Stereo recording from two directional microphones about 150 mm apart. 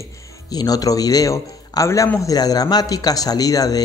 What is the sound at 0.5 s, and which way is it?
Speech, 25° left (ahead or behind).